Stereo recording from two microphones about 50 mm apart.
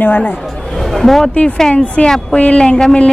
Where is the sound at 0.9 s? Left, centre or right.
Centre.